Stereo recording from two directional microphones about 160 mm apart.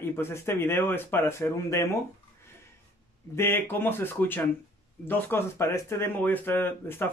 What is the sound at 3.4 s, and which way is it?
Speech, 15° left (ahead or behind).